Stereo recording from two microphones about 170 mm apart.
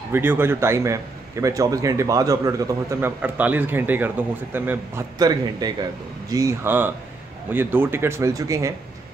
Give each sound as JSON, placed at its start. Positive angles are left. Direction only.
{"t": 0.1, "sound": "a man's voice", "side_deg": -10}
{"t": 5.2, "sound": "a man's voice", "side_deg": -25}